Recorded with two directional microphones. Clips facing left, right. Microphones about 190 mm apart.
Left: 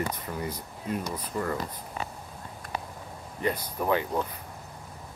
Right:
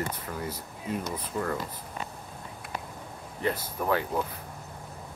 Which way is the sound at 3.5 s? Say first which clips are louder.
Left 1 dB; 15° left (ahead or behind).